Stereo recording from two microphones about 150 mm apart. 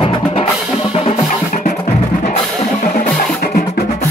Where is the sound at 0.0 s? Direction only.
40° left (ahead or behind).